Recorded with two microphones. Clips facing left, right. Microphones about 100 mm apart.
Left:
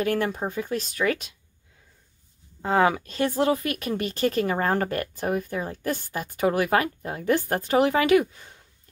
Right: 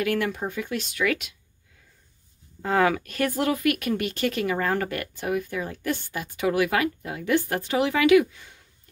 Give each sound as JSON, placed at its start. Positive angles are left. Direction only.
{"t": 0.0, "sound": "speech", "side_deg": 35}
{"t": 2.6, "sound": "speech", "side_deg": 25}